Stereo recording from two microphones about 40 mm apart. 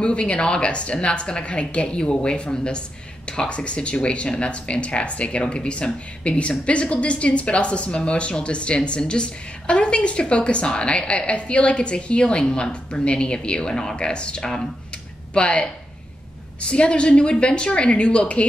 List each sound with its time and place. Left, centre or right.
0.0 s speech: left